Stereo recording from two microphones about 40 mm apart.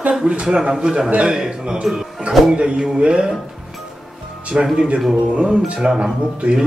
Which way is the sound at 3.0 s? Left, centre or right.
Right.